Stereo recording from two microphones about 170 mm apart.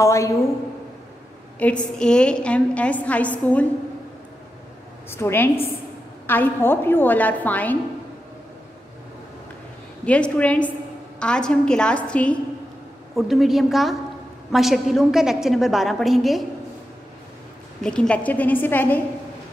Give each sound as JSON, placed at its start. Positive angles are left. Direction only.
{"t": 0.0, "sound": "a woman's voice", "side_deg": 20}
{"t": 1.6, "sound": "a woman's voice", "side_deg": 5}
{"t": 5.1, "sound": "a woman's voice", "side_deg": 15}
{"t": 10.0, "sound": "a woman's voice", "side_deg": 5}
{"t": 17.8, "sound": "a woman's voice", "side_deg": 5}